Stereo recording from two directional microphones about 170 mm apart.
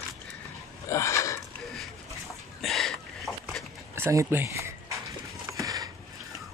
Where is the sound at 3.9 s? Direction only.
15° right (ahead or behind).